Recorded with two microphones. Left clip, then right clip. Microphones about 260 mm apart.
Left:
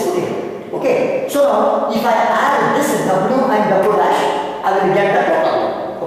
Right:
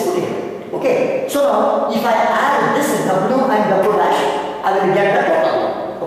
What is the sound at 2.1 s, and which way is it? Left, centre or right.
Speech, centre.